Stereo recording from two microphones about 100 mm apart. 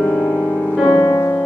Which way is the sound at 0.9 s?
25° left (ahead or behind).